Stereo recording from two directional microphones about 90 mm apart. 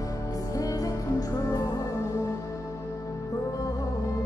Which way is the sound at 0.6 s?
40° left (ahead or behind).